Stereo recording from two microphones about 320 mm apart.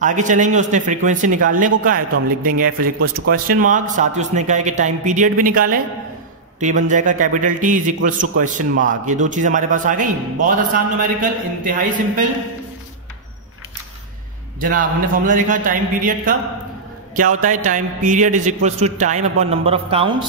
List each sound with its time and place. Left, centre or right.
0.0 s a man's voice: right
14.6 s a man's voice: right